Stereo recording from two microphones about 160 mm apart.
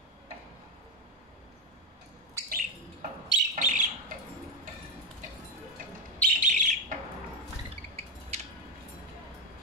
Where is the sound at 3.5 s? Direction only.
50° right (ahead or behind).